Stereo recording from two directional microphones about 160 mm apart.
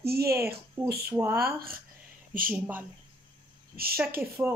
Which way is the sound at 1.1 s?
15° right (ahead or behind).